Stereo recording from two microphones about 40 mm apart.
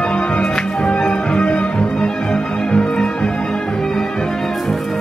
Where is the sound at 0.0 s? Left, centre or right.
Left.